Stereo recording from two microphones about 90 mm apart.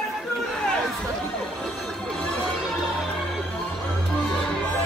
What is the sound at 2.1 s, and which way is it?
Music, 10° left (ahead or behind).